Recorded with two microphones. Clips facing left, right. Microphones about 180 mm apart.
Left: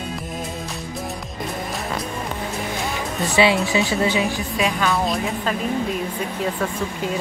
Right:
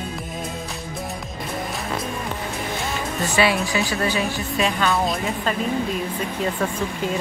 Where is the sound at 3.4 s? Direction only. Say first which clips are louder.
Left 3 dB; 20° left (ahead or behind).